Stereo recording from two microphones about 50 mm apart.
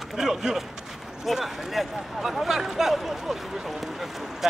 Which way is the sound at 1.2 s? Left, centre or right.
Centre.